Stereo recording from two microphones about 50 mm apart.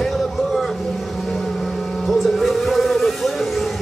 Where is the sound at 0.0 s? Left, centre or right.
Centre.